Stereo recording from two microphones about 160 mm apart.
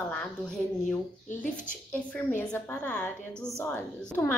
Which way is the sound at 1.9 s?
10° left (ahead or behind).